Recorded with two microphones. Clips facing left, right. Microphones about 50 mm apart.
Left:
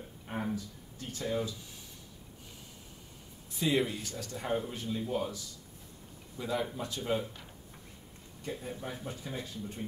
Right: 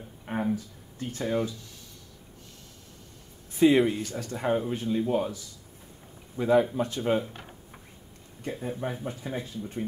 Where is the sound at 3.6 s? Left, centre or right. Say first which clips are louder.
Right 9 dB; right.